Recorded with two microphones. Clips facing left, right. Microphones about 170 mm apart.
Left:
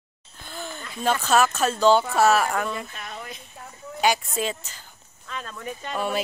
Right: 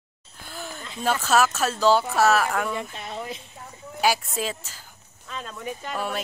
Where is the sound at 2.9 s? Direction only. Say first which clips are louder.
Right 4 dB; 25° right (ahead or behind).